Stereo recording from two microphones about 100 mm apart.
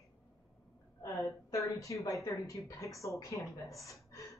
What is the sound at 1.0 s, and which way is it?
Speech, 30° left (ahead or behind).